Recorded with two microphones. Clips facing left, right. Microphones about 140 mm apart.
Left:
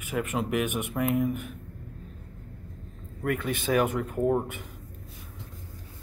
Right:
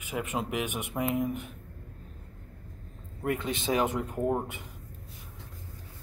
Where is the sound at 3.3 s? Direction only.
20° right (ahead or behind).